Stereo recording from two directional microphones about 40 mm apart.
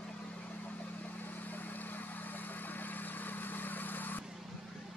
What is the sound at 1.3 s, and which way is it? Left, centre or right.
Vehicle, left.